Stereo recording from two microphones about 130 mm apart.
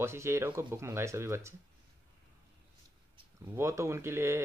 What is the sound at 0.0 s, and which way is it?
Speech, 20° right (ahead or behind).